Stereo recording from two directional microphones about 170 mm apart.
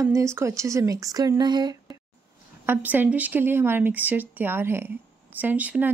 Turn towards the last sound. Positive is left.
turn(degrees=-10)  # may be behind; listen again after turning